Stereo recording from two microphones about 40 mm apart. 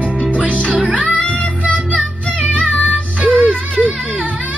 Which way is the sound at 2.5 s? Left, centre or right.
Left.